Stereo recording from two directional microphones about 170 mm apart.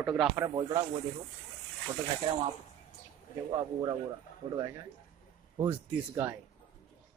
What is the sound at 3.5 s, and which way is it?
Speech, 25° right (ahead or behind).